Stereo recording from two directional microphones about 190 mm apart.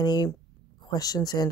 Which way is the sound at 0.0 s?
20° left (ahead or behind).